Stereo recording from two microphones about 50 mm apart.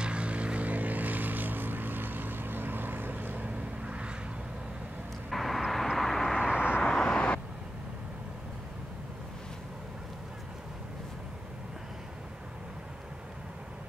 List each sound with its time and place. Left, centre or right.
0.0 s vehicle: right
3.8 s a sound: right
5.3 s vehicle: centre
6.3 s vehicle: centre
6.8 s vehicle: centre